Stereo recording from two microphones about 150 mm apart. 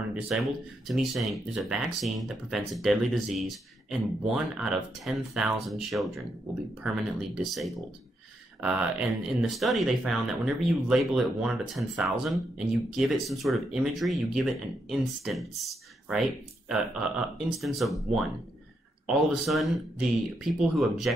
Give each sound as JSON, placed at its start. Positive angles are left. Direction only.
{"t": 0.1, "sound": "speech", "side_deg": 0}
{"t": 17.6, "sound": "speech", "side_deg": 0}